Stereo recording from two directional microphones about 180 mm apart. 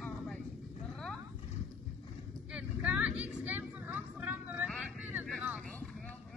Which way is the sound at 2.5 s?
5° right (ahead or behind).